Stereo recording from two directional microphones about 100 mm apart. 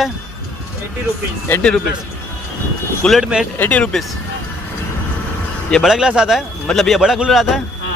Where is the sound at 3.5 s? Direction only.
15° left (ahead or behind).